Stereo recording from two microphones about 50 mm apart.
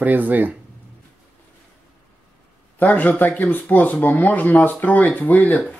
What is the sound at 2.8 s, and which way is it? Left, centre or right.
Speech, left.